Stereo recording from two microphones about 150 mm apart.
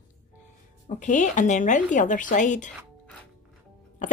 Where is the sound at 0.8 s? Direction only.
55° left (ahead or behind).